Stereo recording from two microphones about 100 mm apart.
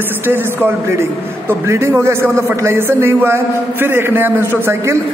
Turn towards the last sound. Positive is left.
turn(degrees=-25)  # may be behind; listen again after turning